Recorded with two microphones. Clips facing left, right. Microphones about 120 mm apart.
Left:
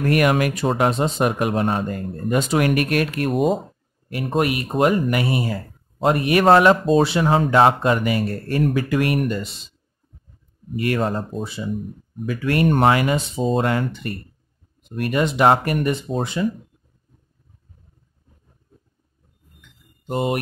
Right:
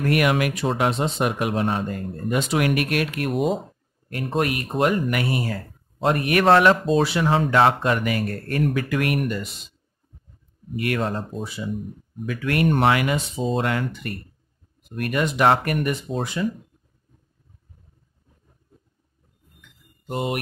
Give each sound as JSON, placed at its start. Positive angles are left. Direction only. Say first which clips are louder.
{"t": 0.0, "sound": "speech", "louder": "left 2 dB", "side_deg": 40}
{"t": 4.4, "sound": "speech", "louder": "left 3 dB", "side_deg": 20}
{"t": 10.8, "sound": "speech", "louder": "left 3 dB", "side_deg": 35}
{"t": 12.3, "sound": "speech", "louder": "left 2 dB", "side_deg": 30}
{"t": 20.1, "sound": "speech", "louder": "left 4 dB", "side_deg": 30}